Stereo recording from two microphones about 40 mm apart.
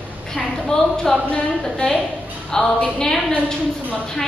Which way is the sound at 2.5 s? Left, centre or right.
Centre.